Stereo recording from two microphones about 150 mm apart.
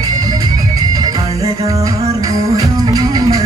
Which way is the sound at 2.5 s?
25° right (ahead or behind).